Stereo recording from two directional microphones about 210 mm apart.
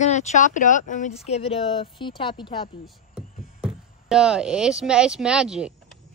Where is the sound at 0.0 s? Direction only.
35° left (ahead or behind).